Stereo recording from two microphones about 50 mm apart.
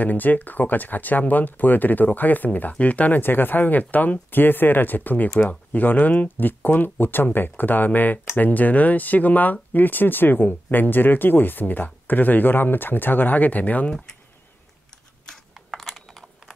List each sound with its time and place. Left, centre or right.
0.0 s speech: left
3.2 s speech: left
15.5 s computer keyboard: centre
16.1 s computer keyboard: centre